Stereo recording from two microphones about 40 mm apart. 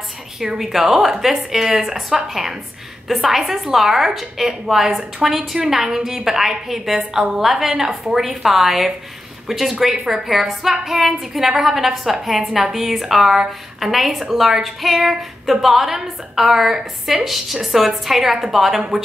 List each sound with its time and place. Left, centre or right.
0.6 s a woman's voice: centre